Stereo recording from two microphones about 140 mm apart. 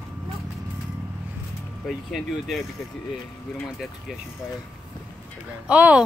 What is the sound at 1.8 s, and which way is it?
Speech, centre (ahead or behind).